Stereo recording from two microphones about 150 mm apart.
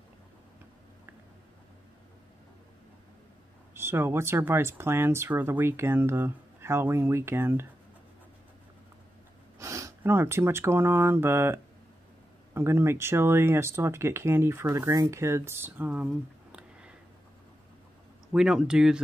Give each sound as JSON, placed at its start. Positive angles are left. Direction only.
{"t": 3.7, "sound": "speech", "side_deg": -15}
{"t": 9.6, "sound": "speech", "side_deg": -20}
{"t": 16.1, "sound": "a sound", "side_deg": -5}
{"t": 18.3, "sound": "speech", "side_deg": -5}